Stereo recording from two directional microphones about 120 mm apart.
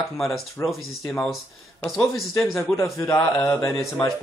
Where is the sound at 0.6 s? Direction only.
20° left (ahead or behind).